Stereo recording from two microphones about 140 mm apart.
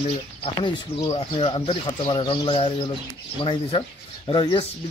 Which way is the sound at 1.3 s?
40° left (ahead or behind).